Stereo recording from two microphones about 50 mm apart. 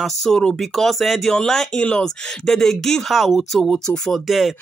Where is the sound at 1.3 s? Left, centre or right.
Centre.